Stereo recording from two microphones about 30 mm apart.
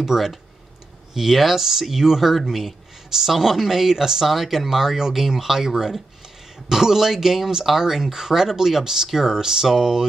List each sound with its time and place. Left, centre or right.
0.0 s speech: centre
4.3 s speech: centre
9.4 s a sound: centre